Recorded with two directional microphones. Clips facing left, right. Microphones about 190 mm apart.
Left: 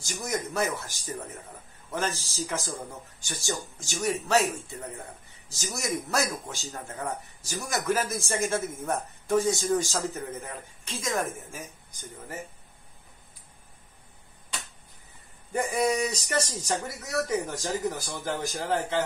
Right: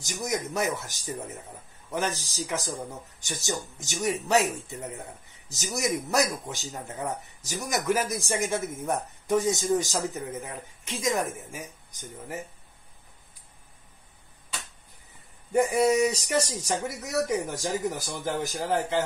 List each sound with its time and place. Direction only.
0.0 s speech: 15° right (ahead or behind)
15.5 s speech: 20° right (ahead or behind); by 18.9 s centre (ahead or behind)